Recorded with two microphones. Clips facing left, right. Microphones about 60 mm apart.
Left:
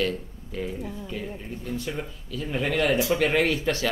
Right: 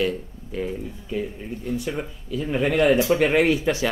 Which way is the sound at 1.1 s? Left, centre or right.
Centre.